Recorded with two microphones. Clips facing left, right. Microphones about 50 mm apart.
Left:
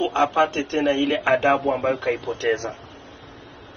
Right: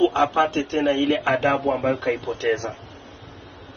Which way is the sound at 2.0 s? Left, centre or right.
Left.